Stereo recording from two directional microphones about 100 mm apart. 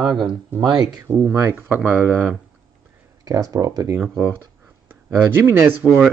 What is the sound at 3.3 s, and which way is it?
Speech, 35° right (ahead or behind).